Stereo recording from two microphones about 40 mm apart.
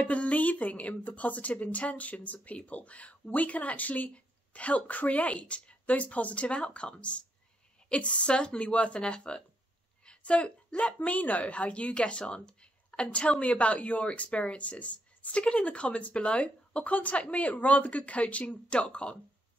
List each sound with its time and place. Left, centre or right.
0.0 s speech: left
10.0 s a sound: left
11.0 s speech: left